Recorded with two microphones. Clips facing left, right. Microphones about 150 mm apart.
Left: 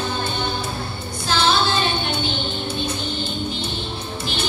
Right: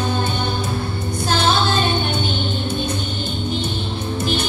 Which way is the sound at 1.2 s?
50° right (ahead or behind).